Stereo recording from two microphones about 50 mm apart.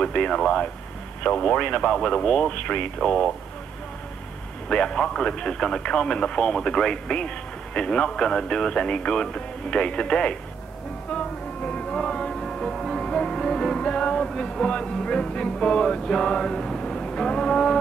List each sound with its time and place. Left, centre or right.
0.0 s a sound: centre
1.2 s speech: centre
4.6 s speech: centre
11.1 s music: centre